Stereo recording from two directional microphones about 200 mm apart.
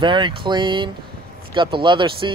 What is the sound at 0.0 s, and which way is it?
Speech, 25° right (ahead or behind).